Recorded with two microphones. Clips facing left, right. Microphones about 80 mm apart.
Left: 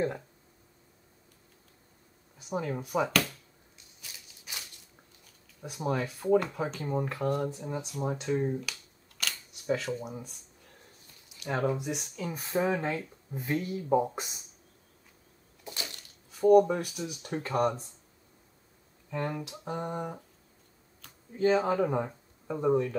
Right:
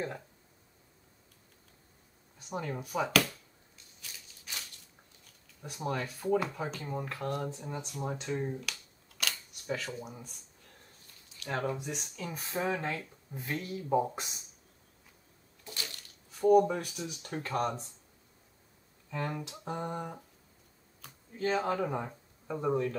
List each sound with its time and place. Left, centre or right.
2.3 s speech: centre
4.0 s a sound: centre
5.2 s a sound: centre
6.4 s speech: centre
7.2 s speech: centre
15.6 s a sound: centre
16.3 s speech: centre
19.0 s speech: centre
21.3 s speech: centre